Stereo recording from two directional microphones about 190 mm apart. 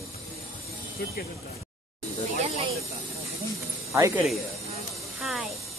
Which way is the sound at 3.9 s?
15° right (ahead or behind).